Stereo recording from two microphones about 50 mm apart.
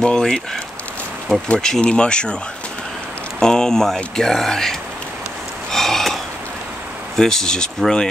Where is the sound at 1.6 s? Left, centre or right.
Centre.